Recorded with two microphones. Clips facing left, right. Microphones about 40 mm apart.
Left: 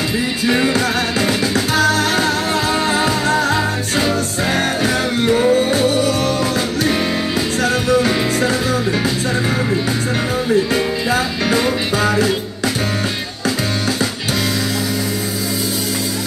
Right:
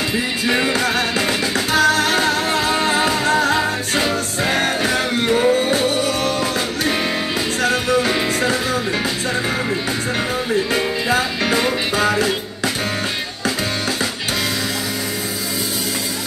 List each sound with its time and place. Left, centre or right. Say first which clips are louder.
0.5 s music: left 2 dB; right
7.6 s music: left 2 dB; right
10.5 s music: left 4 dB; right